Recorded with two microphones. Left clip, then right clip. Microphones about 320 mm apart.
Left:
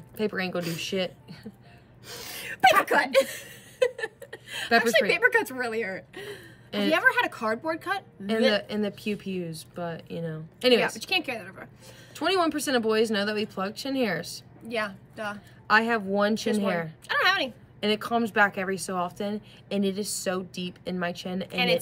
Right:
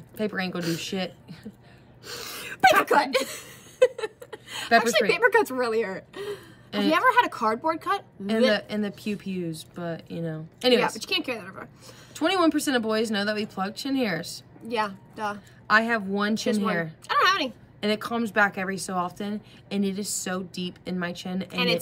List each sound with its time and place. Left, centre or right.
0.2 s speech: centre
2.0 s a sound: centre
3.0 s chuckle: centre
4.6 s speech: centre
5.1 s speech: centre
8.5 s speech: centre
11.0 s speech: centre
12.1 s speech: centre
14.7 s speech: centre
15.6 s speech: centre
17.1 s speech: centre
17.7 s speech: centre